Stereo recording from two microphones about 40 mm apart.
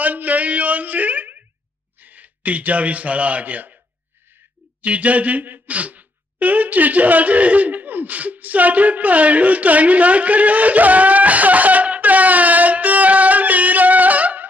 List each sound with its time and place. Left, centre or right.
0.0 s a sound: right
2.0 s a man's voice: right
4.8 s a man's voice: right